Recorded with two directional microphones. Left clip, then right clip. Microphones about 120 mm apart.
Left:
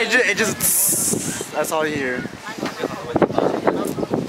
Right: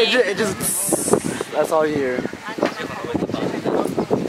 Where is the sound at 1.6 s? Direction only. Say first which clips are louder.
Right 3 dB; 45° left (ahead or behind).